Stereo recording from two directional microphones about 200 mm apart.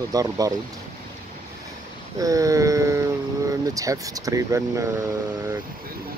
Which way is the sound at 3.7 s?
15° right (ahead or behind).